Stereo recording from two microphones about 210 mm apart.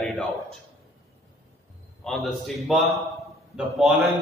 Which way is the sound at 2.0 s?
Centre (ahead or behind).